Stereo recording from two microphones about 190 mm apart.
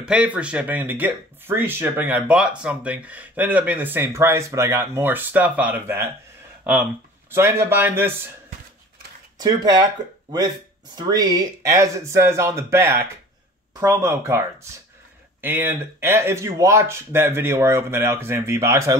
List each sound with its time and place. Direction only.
0.0 s speech: 5° right (ahead or behind)
9.4 s speech: 20° right (ahead or behind)
11.0 s speech: 20° right (ahead or behind)